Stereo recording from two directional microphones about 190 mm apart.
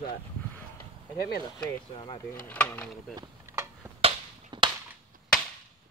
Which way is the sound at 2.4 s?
10° left (ahead or behind).